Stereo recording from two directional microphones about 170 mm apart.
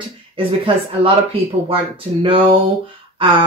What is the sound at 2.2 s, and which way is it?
Speech, 30° right (ahead or behind).